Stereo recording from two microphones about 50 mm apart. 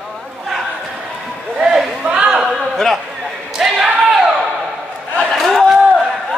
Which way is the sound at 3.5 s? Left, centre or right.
Centre.